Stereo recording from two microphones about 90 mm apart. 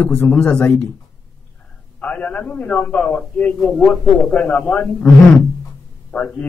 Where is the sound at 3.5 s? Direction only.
5° left (ahead or behind).